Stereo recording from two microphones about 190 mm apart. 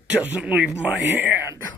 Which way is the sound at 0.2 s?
5° right (ahead or behind).